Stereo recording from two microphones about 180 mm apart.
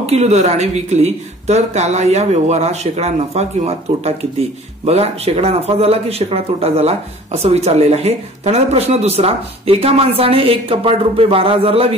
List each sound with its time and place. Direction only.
0.0 s speech: 35° right (ahead or behind)